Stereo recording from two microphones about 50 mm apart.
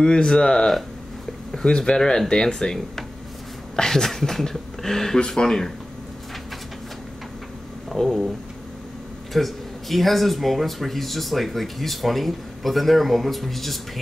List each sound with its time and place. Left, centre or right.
0.0 s speech: centre
7.9 s speech: centre
9.3 s speech: centre